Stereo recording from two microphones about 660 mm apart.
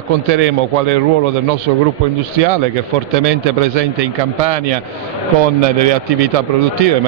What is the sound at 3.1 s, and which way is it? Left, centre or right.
Speech, right.